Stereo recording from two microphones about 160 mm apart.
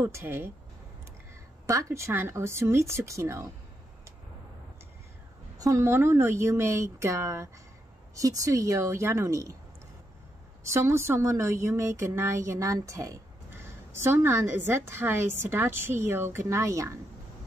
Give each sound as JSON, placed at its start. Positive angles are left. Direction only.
{"t": 0.0, "sound": "a woman's voice", "side_deg": -15}
{"t": 1.7, "sound": "a woman's voice", "side_deg": -20}
{"t": 5.6, "sound": "a woman's voice", "side_deg": -20}
{"t": 10.6, "sound": "a woman's voice", "side_deg": -15}